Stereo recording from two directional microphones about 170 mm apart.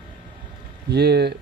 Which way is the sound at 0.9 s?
70° right (ahead or behind).